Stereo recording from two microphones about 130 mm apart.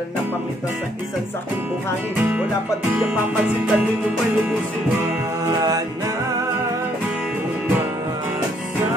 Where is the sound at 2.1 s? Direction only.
15° right (ahead or behind).